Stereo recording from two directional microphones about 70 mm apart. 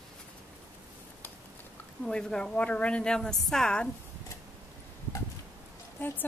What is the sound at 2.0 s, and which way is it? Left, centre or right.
A woman's voice, centre.